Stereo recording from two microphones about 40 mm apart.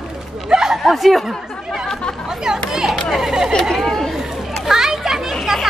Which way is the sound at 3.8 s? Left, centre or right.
Centre.